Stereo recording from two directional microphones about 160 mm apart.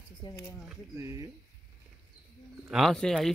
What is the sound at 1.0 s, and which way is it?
Speech, 20° right (ahead or behind).